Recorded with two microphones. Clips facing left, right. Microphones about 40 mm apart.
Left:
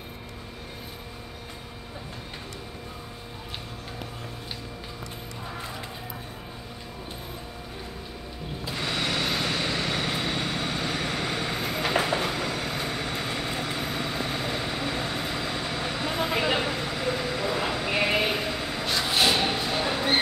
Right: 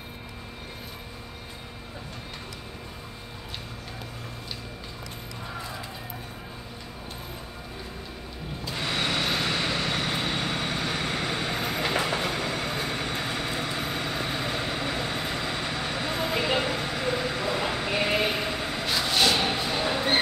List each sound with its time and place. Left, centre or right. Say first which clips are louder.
9.0 s vehicle: right 1 dB; centre
10.2 s train: even; centre
12.5 s vehicle: right 1 dB; centre
13.1 s vehicle: even; centre
16.3 s vehicle: even; centre
16.6 s train: even; centre
17.8 s sheep: left 1 dB; centre
18.8 s a sound: left 1 dB; centre
19.0 s music: even; centre
19.3 s a sound: even; centre